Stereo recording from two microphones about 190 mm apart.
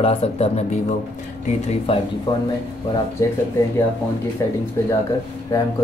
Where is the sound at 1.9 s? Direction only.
30° left (ahead or behind).